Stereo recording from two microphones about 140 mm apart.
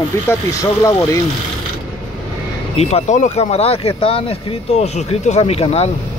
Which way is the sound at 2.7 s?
50° left (ahead or behind).